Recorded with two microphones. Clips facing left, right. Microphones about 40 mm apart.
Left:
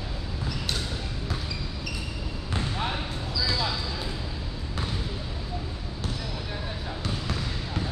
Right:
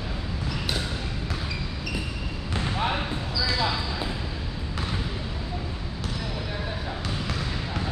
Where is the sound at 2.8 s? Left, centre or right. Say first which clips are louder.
Right 4 dB; centre.